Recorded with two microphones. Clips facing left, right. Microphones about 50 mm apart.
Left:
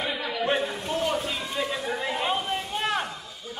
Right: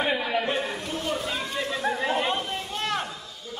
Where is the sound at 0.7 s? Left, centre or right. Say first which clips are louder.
Left 3 dB; left.